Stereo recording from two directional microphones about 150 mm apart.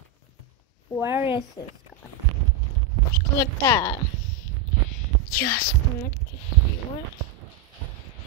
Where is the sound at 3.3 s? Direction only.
20° left (ahead or behind).